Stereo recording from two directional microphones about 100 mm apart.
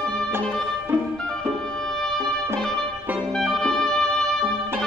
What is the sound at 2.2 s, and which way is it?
Music, 25° right (ahead or behind).